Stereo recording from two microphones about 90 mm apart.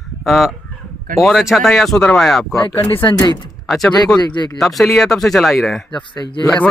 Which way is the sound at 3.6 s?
5° left (ahead or behind).